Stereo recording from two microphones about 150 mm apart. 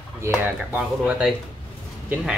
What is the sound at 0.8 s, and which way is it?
Speech, 5° right (ahead or behind).